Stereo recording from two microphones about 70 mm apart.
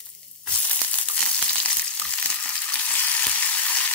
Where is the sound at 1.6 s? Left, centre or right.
Centre.